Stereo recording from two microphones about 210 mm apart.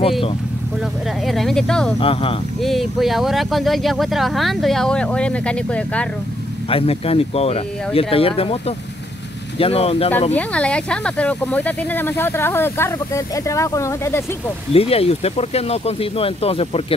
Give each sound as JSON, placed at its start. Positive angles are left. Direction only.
{"t": 1.2, "sound": "speech", "side_deg": 0}
{"t": 2.0, "sound": "speech", "side_deg": 25}
{"t": 2.6, "sound": "speech", "side_deg": 0}
{"t": 6.7, "sound": "speech", "side_deg": 30}
{"t": 10.3, "sound": "speech", "side_deg": 5}
{"t": 14.7, "sound": "speech", "side_deg": 30}